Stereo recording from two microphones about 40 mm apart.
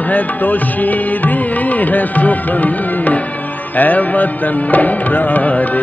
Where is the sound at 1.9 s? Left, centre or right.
Left.